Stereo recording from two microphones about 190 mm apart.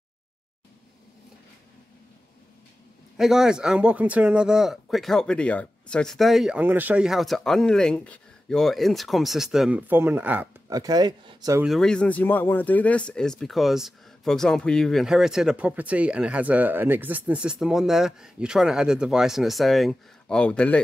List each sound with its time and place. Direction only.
3.2 s speech: centre (ahead or behind)
10.7 s speech: 20° right (ahead or behind)
11.6 s speech: centre (ahead or behind)